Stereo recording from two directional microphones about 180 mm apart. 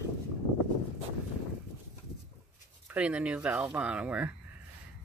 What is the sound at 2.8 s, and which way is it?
Speech, 5° right (ahead or behind).